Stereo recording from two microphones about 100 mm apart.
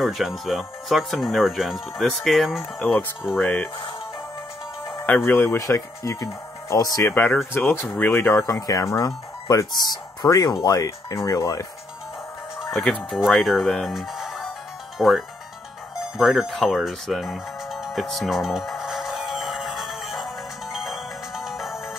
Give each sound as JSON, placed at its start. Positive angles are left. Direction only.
{"t": 0.0, "sound": "speech", "side_deg": 0}
{"t": 2.8, "sound": "speech", "side_deg": 15}
{"t": 5.3, "sound": "speech", "side_deg": 20}
{"t": 5.6, "sound": "speech", "side_deg": 30}
{"t": 7.1, "sound": "speech", "side_deg": 20}
{"t": 13.1, "sound": "speech", "side_deg": 0}
{"t": 16.2, "sound": "music", "side_deg": 0}